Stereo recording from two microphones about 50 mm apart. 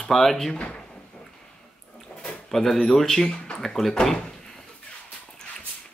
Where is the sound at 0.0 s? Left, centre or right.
Centre.